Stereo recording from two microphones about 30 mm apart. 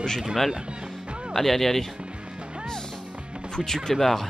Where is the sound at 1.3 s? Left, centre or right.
Centre.